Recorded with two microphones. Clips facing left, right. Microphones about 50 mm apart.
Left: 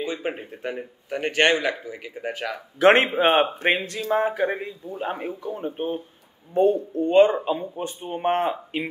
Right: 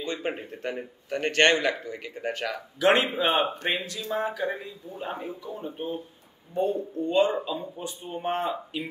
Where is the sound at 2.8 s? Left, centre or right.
Left.